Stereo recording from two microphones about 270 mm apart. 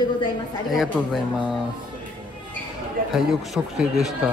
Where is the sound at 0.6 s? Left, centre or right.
Centre.